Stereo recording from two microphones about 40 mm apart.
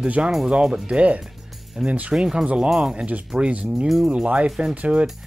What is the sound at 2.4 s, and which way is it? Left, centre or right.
Speech, right.